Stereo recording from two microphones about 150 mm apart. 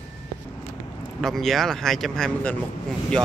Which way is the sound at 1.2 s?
Centre (ahead or behind).